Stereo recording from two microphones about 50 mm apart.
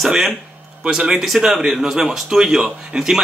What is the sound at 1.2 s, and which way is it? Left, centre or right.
A man's voice, centre.